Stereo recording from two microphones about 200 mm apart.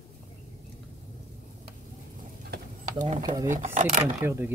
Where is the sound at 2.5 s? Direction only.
40° right (ahead or behind).